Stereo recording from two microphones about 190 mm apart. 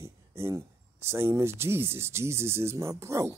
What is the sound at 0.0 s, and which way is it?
Speech, 15° right (ahead or behind).